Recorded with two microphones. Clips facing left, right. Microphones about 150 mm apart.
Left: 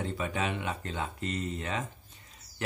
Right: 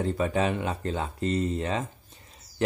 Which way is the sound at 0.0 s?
40° right (ahead or behind).